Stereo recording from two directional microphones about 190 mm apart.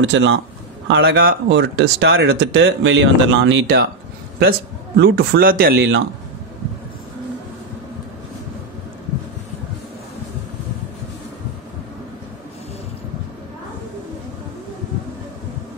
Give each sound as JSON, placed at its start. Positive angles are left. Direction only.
{"t": 0.0, "sound": "a man's voice", "side_deg": -75}